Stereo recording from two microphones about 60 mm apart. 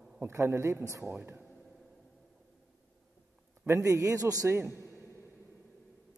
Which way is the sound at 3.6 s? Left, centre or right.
Right.